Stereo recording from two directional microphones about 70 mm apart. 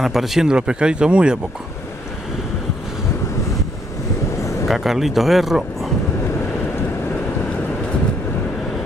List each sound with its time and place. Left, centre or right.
0.0 s speech: centre
4.6 s speech: centre